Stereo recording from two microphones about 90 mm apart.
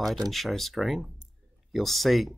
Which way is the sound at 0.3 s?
Centre (ahead or behind).